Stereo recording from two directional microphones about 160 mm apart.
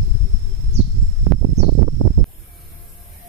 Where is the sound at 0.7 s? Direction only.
40° right (ahead or behind).